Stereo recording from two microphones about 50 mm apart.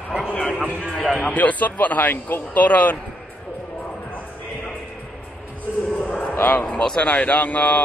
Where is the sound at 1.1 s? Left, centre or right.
Left.